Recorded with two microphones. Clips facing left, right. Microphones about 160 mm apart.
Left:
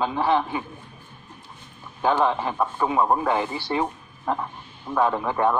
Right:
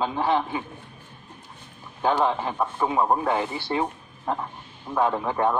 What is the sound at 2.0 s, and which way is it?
Speech, 15° right (ahead or behind).